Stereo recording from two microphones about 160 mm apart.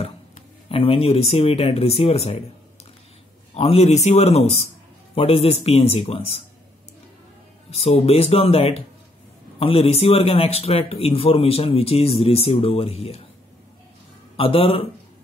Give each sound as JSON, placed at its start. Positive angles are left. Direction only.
{"t": 0.7, "sound": "a man's voice", "side_deg": 35}
{"t": 3.5, "sound": "a man's voice", "side_deg": 40}
{"t": 7.7, "sound": "a man's voice", "side_deg": 40}
{"t": 14.3, "sound": "speech", "side_deg": 35}